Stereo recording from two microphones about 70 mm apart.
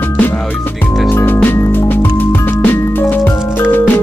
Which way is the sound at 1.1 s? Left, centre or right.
Left.